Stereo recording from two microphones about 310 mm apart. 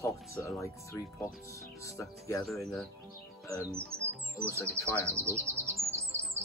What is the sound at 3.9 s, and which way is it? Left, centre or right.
Music, right.